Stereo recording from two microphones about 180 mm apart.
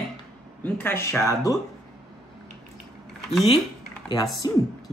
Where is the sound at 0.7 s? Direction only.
10° left (ahead or behind).